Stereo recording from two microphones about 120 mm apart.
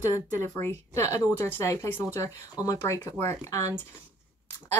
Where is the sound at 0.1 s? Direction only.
25° left (ahead or behind).